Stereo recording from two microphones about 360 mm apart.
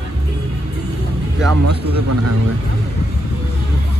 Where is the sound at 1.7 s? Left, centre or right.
Right.